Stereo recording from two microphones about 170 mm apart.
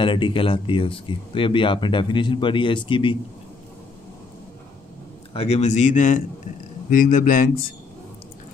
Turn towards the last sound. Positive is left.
turn(degrees=55)  # may be behind; listen again after turning